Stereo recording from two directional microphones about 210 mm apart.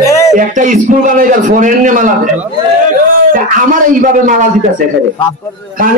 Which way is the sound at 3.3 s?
40° right (ahead or behind).